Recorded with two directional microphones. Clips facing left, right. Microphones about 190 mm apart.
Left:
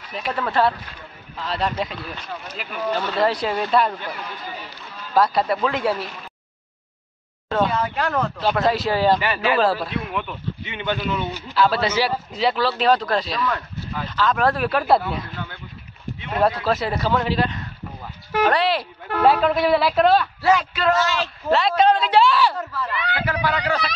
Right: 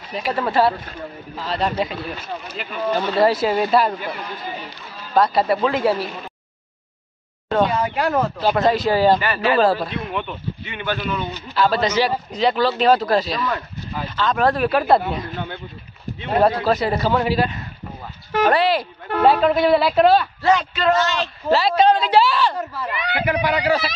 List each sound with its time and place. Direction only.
0.5 s a woman's voice: 10° right (ahead or behind)
2.9 s speech: 10° right (ahead or behind)
5.1 s a woman's voice: centre (ahead or behind)
7.6 s a woman's voice: 15° right (ahead or behind)
9.2 s a man's voice: 15° left (ahead or behind)
9.6 s a woman's voice: centre (ahead or behind)
10.6 s a man's voice: 20° left (ahead or behind); by 13.7 s centre (ahead or behind)
13.7 s a sound: 10° right (ahead or behind)
14.1 s a woman's voice: centre (ahead or behind)
15.3 s speech: 25° right (ahead or behind)
16.6 s a woman's voice: centre (ahead or behind)
22.6 s speech: 15° right (ahead or behind)